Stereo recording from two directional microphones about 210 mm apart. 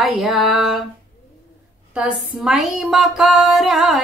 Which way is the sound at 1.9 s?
5° right (ahead or behind).